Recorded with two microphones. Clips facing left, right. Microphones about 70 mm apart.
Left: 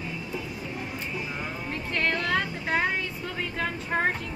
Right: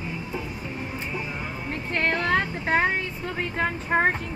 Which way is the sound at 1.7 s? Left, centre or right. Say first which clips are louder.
Right 3 dB; right.